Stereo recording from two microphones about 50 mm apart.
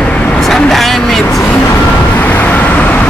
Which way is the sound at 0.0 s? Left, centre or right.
Left.